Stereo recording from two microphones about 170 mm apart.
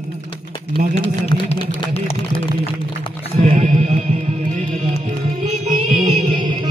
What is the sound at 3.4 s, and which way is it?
Music, 45° right (ahead or behind).